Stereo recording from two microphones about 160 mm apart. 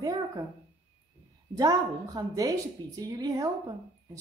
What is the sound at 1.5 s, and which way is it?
A woman's voice, 20° right (ahead or behind).